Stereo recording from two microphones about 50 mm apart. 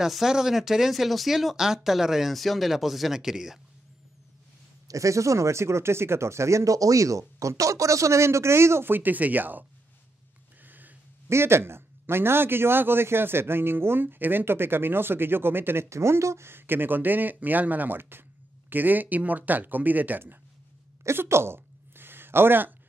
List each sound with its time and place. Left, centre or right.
0.0 s speech: centre
4.9 s speech: right
8.9 s speech: right
11.2 s a man's voice: right
15.9 s a man's voice: right
21.0 s a sound: right